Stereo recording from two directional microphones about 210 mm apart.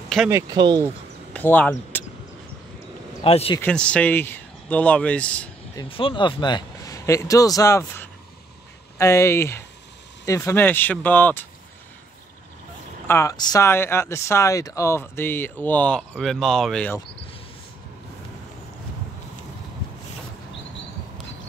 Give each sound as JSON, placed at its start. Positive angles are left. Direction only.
{"t": 0.3, "sound": "speech", "side_deg": -15}
{"t": 1.3, "sound": "a sound", "side_deg": 10}
{"t": 3.3, "sound": "speech", "side_deg": 25}
{"t": 3.6, "sound": "speech", "side_deg": 5}
{"t": 5.8, "sound": "speech", "side_deg": 25}
{"t": 13.0, "sound": "speech", "side_deg": 15}